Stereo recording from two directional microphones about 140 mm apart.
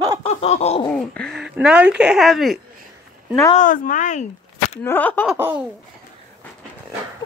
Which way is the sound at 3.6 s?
70° left (ahead or behind).